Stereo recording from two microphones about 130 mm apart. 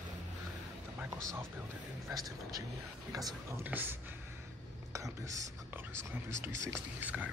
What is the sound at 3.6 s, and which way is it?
Speech, 15° right (ahead or behind).